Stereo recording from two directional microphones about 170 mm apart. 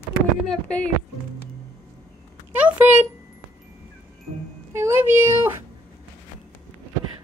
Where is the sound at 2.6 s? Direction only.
10° right (ahead or behind).